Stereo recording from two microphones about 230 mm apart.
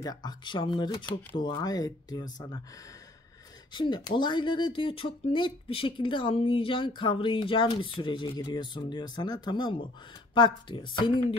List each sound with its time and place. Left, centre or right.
0.0 s speech: centre
3.7 s speech: centre